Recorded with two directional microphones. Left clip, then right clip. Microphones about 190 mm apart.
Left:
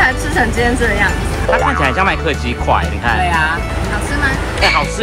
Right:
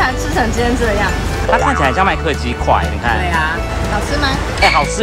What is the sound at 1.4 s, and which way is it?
Speech, centre (ahead or behind).